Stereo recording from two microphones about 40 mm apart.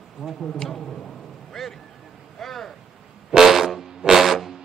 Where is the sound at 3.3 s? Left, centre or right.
Centre.